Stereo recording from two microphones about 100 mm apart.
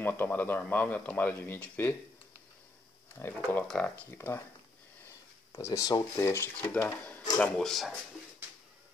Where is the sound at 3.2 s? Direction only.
20° left (ahead or behind).